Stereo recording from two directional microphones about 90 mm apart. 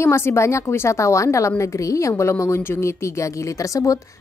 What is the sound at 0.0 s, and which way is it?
Speech, 30° left (ahead or behind).